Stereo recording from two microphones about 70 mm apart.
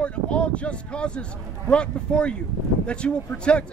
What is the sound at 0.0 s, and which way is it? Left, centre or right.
A man's voice, centre.